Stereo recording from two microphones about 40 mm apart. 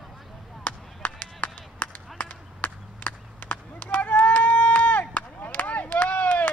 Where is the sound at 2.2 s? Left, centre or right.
Left.